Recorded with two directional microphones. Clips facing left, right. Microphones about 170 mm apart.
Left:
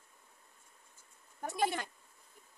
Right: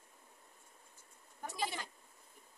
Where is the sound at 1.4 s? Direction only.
55° left (ahead or behind).